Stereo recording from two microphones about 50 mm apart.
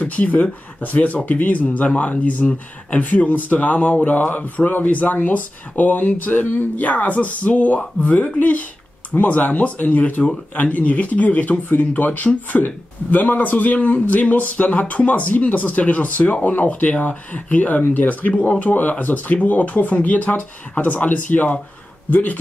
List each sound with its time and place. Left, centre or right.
0.0 s speech: left